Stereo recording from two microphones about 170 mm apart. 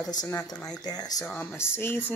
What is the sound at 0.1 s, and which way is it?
Speech, 20° left (ahead or behind).